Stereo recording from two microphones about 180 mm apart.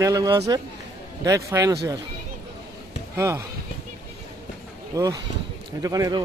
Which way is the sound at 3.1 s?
15° right (ahead or behind).